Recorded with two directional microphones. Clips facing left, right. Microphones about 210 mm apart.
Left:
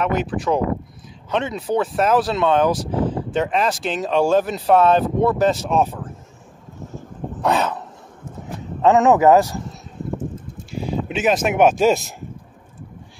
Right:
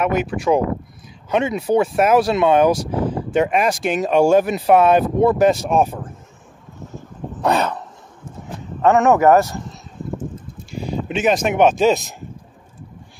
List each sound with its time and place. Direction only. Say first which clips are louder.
0.0 s speech: right 2 dB; 10° right (ahead or behind)
7.4 s a sound: right 1 dB; centre (ahead or behind)
8.8 s a man's voice: even; 20° left (ahead or behind)
10.7 s speech: even; centre (ahead or behind)